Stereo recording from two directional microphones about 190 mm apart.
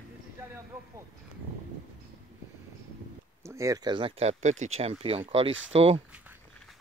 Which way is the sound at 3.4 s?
15° right (ahead or behind).